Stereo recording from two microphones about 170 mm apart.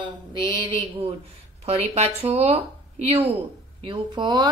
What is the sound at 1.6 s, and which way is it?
Speech, 35° right (ahead or behind).